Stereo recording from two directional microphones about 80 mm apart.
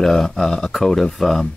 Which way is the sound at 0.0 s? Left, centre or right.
Centre.